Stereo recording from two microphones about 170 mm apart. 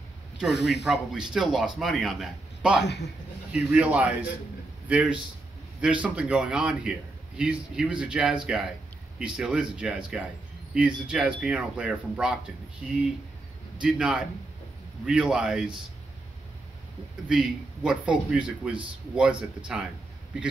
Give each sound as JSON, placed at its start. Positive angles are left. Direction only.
{"t": 0.5, "sound": "speech", "side_deg": 90}
{"t": 0.8, "sound": "a man's voice", "side_deg": -5}
{"t": 2.8, "sound": "a man's voice", "side_deg": 90}
{"t": 3.5, "sound": "a man's voice", "side_deg": -5}
{"t": 13.7, "sound": "a man's voice", "side_deg": -5}
{"t": 17.3, "sound": "a man's voice", "side_deg": -5}